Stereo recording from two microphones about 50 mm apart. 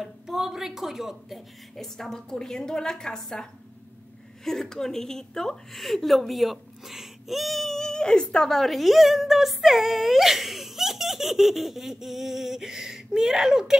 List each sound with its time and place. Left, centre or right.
0.0 s a woman's voice: centre
1.8 s a woman's voice: centre
4.5 s a woman's voice: centre